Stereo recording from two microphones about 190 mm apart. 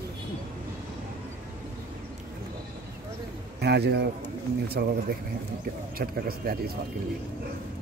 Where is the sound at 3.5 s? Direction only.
60° right (ahead or behind).